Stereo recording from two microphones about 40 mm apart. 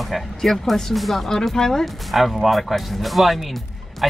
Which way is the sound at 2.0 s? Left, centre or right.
Centre.